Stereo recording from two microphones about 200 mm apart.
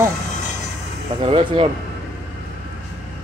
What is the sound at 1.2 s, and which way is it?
Speech, 30° right (ahead or behind).